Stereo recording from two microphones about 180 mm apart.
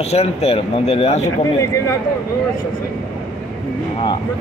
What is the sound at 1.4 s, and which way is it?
Speech, 15° left (ahead or behind).